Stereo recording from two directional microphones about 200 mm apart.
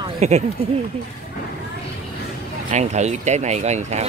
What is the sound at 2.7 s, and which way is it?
Speech, 35° right (ahead or behind).